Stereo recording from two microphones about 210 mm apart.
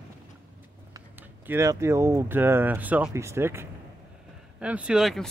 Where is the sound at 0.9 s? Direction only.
10° right (ahead or behind).